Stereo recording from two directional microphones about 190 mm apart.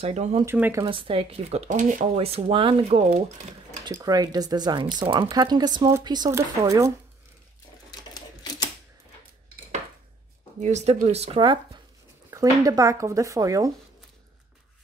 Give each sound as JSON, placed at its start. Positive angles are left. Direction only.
{"t": 0.0, "sound": "speech", "side_deg": -35}
{"t": 0.5, "sound": "speech", "side_deg": -10}
{"t": 0.8, "sound": "speech", "side_deg": -25}
{"t": 10.6, "sound": "speech", "side_deg": -35}